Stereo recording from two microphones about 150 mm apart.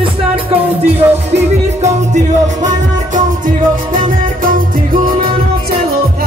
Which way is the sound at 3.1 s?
60° right (ahead or behind).